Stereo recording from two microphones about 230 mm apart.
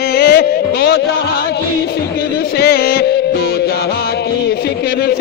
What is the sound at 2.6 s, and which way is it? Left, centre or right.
Music, left.